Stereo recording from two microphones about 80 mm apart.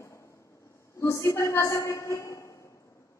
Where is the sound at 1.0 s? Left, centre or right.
Left.